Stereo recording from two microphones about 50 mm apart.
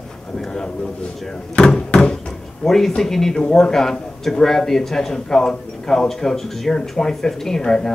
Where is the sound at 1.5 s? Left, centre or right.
Centre.